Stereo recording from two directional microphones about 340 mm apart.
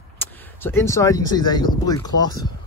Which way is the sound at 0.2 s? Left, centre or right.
Centre.